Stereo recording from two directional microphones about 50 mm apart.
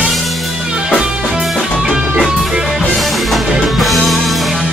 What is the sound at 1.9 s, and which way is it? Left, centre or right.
Music, centre.